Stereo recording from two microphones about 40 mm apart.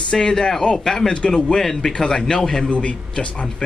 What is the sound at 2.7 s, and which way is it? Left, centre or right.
Speech, left.